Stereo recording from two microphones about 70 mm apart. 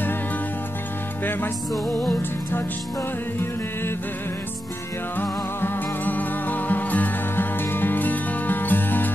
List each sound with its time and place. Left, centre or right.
5.1 s music: left